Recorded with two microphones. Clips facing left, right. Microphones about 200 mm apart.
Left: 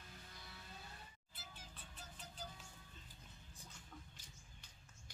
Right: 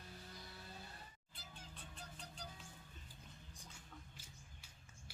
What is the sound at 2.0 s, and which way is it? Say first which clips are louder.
Music: even; 5° left (ahead or behind).